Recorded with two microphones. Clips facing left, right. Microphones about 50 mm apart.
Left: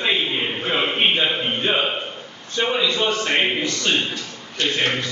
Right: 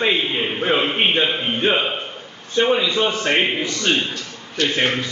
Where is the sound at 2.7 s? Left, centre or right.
Centre.